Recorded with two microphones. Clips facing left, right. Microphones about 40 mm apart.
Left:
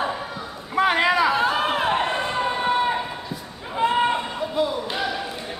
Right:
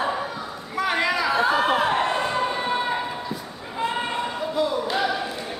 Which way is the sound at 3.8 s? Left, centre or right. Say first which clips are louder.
Left 5 dB; centre.